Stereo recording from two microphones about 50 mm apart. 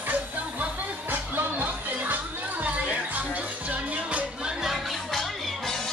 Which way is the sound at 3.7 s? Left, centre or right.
Right.